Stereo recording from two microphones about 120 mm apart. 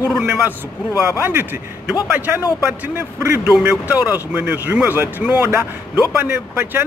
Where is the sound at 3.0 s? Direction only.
20° right (ahead or behind).